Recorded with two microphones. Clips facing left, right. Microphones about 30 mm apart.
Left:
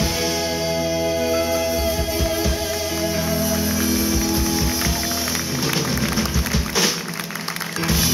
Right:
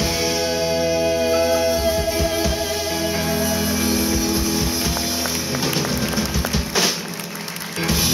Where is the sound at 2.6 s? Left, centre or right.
Right.